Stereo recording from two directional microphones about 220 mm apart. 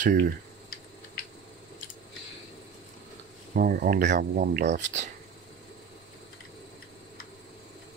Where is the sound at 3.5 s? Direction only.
40° right (ahead or behind).